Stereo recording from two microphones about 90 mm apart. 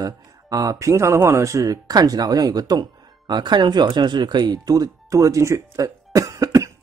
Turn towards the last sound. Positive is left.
turn(degrees=-35)  # may be behind; listen again after turning